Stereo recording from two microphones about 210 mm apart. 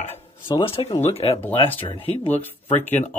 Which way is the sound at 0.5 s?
25° left (ahead or behind).